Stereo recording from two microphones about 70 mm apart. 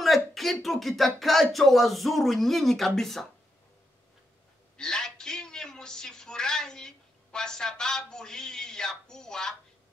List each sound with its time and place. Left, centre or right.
0.0 s speech: centre
4.7 s a woman's voice: centre